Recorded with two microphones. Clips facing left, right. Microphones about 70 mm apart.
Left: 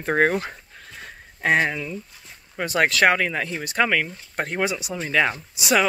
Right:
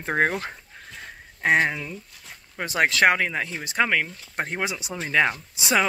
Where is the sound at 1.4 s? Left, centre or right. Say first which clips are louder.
Even; centre.